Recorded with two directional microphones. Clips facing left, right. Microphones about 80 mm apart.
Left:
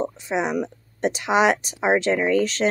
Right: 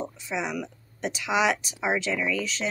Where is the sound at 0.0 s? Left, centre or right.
Left.